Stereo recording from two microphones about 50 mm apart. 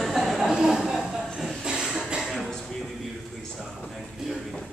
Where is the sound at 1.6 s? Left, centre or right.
Centre.